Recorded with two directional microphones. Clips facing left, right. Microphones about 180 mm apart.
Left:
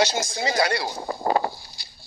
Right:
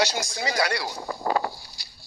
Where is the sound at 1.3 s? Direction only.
25° left (ahead or behind).